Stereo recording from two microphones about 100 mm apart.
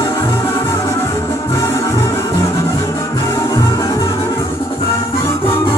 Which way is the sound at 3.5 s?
30° left (ahead or behind).